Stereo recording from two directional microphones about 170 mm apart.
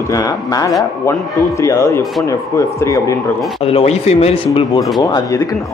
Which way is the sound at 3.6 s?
35° left (ahead or behind).